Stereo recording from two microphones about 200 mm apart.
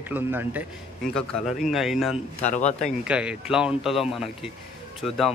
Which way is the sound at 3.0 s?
5° right (ahead or behind).